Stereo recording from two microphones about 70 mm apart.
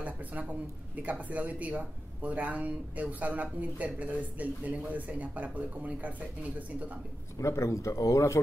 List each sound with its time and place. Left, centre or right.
0.0 s speech: right
7.3 s speech: left